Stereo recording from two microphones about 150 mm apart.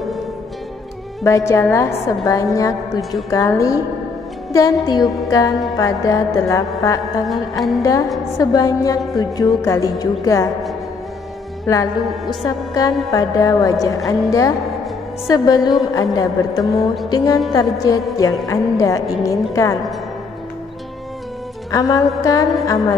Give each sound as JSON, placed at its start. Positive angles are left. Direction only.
{"t": 1.2, "sound": "a woman's voice", "side_deg": 20}
{"t": 11.6, "sound": "a woman's voice", "side_deg": 25}
{"t": 21.7, "sound": "a woman's voice", "side_deg": 25}